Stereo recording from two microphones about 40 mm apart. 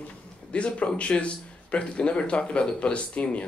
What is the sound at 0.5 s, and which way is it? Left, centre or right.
Speech, left.